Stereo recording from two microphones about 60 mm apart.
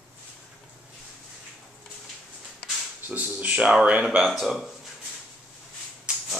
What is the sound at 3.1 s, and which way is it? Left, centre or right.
Speech, right.